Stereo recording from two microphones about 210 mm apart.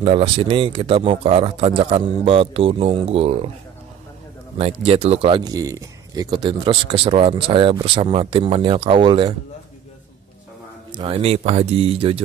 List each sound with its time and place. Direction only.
0.0 s speech: 25° right (ahead or behind)
4.6 s speech: 30° right (ahead or behind)
10.9 s speech: 25° right (ahead or behind)